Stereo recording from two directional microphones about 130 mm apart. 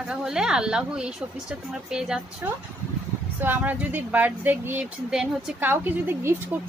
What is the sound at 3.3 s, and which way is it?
Speech, 15° right (ahead or behind).